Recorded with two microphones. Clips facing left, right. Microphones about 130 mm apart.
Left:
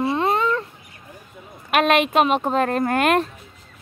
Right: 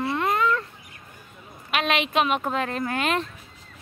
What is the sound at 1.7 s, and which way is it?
Speech, 45° left (ahead or behind).